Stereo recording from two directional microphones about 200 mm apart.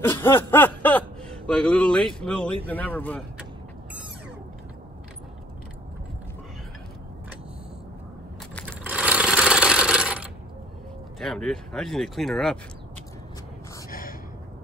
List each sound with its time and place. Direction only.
0.0 s snicker: 10° left (ahead or behind)
1.5 s speech: 5° left (ahead or behind)
8.8 s coin: 5° right (ahead or behind)
11.1 s speech: 5° left (ahead or behind)
13.8 s a sound: 45° left (ahead or behind)